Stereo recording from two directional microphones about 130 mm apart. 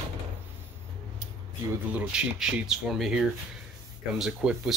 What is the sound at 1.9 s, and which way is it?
Speech, 10° right (ahead or behind).